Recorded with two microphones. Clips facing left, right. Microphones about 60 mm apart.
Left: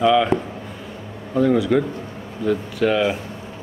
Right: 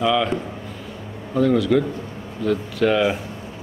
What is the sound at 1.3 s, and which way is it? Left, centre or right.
A man's voice, centre.